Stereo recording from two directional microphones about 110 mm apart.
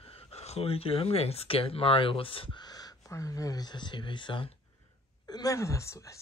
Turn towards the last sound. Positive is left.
turn(degrees=25)  # may be behind; listen again after turning